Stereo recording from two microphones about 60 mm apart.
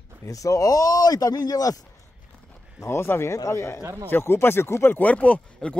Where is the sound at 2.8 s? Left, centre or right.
Left.